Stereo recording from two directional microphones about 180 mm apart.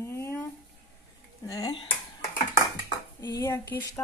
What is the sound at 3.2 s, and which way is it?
Speech, 20° left (ahead or behind).